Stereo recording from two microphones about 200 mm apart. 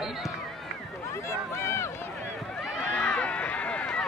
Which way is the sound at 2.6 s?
5° left (ahead or behind).